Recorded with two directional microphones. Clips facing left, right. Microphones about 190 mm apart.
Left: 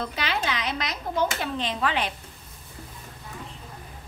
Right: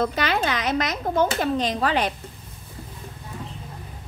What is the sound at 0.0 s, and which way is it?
A woman's voice, 45° right (ahead or behind).